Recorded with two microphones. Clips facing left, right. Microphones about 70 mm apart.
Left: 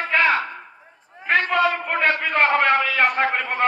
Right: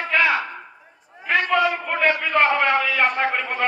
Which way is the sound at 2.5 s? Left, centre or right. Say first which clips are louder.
Left 1 dB; left.